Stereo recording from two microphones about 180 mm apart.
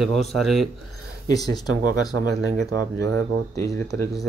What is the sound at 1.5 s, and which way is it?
Speech, 20° left (ahead or behind).